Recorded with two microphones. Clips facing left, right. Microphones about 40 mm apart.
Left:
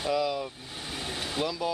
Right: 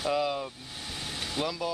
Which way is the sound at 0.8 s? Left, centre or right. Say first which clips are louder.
Left 2 dB; centre.